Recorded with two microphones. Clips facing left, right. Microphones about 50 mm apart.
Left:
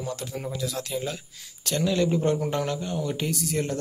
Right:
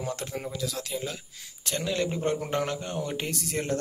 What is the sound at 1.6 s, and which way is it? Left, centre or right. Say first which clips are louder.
Speech: left 5 dB; centre.